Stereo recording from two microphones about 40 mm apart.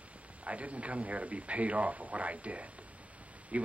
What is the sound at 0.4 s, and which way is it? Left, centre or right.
A man's voice, right.